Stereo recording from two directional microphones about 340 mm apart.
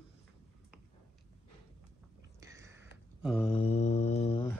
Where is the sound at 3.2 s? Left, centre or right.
Centre.